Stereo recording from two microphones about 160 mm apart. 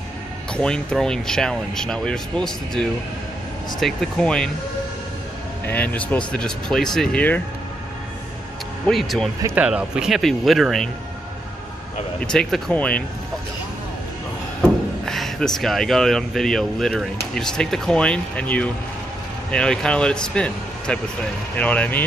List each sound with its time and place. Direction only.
0.5 s speech: 5° left (ahead or behind)
5.7 s speech: 10° left (ahead or behind)
8.8 s speech: centre (ahead or behind)
12.2 s speech: 5° left (ahead or behind)
14.6 s speech: 5° left (ahead or behind)